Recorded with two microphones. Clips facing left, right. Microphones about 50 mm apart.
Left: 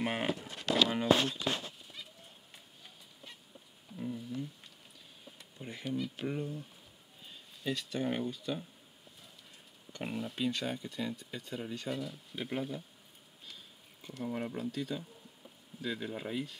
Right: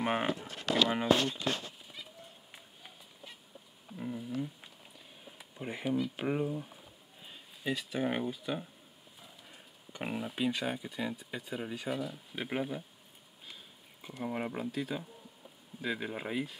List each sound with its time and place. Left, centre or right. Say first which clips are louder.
0.0 s speech: right 3 dB; right
0.8 s speech: even; centre
4.0 s speech: even; centre
5.6 s speech: right 4 dB; centre
14.2 s speech: right 1 dB; right
14.7 s speech: right 1 dB; centre